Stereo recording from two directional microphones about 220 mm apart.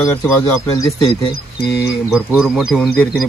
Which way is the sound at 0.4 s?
20° left (ahead or behind).